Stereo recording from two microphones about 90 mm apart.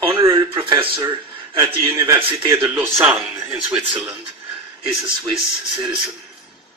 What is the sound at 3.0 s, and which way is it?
Speech, 20° right (ahead or behind).